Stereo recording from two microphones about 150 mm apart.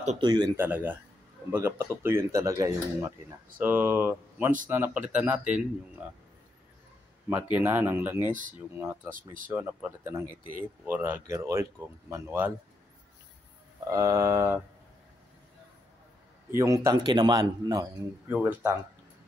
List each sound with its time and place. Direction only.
0.2 s speech: 25° right (ahead or behind)
0.6 s speech: 15° right (ahead or behind)
7.5 s speech: 15° right (ahead or behind)
8.3 s speech: 60° right (ahead or behind)
8.7 s speech: 15° right (ahead or behind)
9.1 s speech: 65° right (ahead or behind)
9.5 s speech: 10° right (ahead or behind)
13.8 s speech: 20° right (ahead or behind)
16.4 s speech: 20° right (ahead or behind)
18.3 s speech: 15° right (ahead or behind)